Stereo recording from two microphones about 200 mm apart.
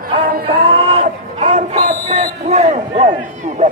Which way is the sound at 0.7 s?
30° right (ahead or behind).